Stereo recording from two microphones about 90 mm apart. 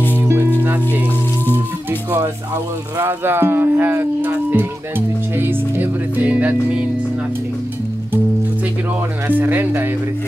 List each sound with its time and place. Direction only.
0.2 s music: 25° right (ahead or behind)
3.0 s speech: 25° right (ahead or behind)
9.3 s speech: 20° right (ahead or behind)